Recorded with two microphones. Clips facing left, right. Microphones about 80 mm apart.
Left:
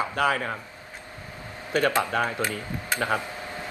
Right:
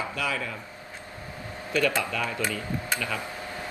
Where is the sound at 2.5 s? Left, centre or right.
Left.